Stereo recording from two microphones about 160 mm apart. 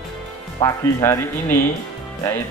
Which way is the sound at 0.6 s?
20° left (ahead or behind).